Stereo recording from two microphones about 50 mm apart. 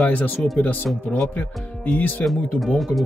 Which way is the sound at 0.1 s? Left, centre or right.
Left.